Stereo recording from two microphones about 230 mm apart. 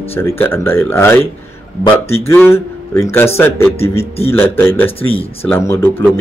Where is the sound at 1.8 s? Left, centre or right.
Left.